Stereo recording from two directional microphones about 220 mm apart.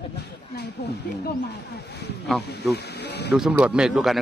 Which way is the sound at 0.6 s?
50° left (ahead or behind).